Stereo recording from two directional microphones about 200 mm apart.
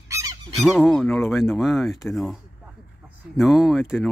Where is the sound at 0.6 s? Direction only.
Centre (ahead or behind).